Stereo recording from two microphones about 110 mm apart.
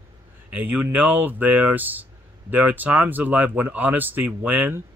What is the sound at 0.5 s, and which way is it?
Speech, 15° right (ahead or behind).